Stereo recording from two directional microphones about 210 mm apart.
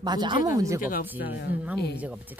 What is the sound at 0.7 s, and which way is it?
Speech, 40° left (ahead or behind).